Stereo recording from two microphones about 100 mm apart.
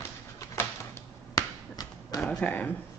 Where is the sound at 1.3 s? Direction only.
40° left (ahead or behind).